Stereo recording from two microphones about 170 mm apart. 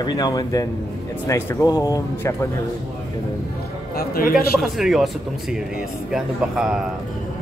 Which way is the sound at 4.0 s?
60° left (ahead or behind).